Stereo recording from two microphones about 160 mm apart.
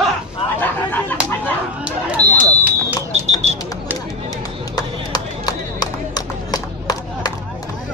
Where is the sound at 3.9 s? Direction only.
20° left (ahead or behind).